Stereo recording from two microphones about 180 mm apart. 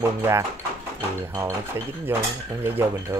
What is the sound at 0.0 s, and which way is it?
Speech, 15° right (ahead or behind).